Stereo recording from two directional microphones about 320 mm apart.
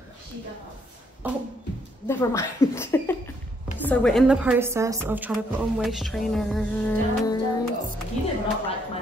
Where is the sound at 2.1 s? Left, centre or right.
Centre.